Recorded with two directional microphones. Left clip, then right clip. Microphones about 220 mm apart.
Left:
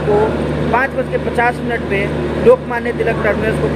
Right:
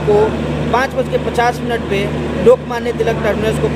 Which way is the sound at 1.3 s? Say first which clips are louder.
Even; 15° right (ahead or behind).